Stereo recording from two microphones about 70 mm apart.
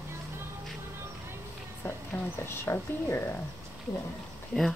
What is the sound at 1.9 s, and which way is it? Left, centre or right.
Speech, left.